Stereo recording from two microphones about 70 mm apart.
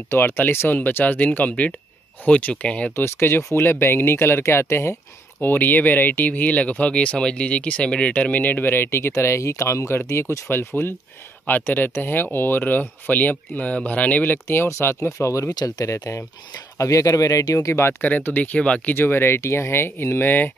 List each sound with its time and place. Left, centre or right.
0.1 s speech: left
3.0 s speech: left
5.4 s speech: left
18.0 s speech: left
18.9 s speech: left